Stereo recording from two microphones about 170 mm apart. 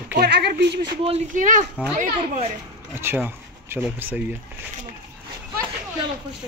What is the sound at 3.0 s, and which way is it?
Speech, 15° right (ahead or behind).